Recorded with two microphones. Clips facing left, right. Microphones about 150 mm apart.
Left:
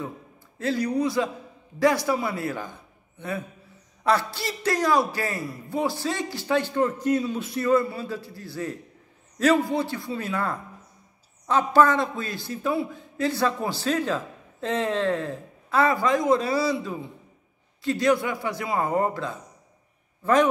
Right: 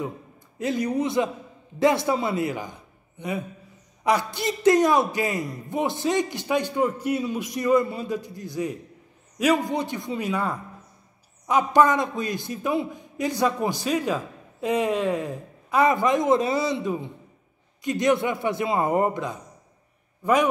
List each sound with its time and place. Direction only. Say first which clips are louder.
0.6 s a man's voice: even; 20° right (ahead or behind)